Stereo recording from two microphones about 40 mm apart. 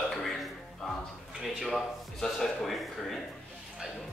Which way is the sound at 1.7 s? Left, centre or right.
Centre.